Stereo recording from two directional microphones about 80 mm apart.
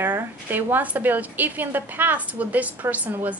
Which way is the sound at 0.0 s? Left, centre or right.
Right.